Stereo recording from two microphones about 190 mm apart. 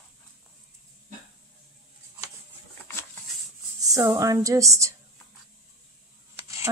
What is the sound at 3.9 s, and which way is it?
Speech, 15° right (ahead or behind).